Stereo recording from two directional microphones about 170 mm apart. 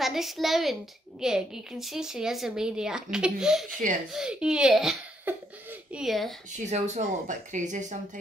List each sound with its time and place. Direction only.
0.0 s a woman's voice: centre (ahead or behind)
6.7 s speech: 45° right (ahead or behind)